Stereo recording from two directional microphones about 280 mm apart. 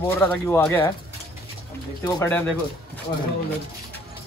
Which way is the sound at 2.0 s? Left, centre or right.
Centre.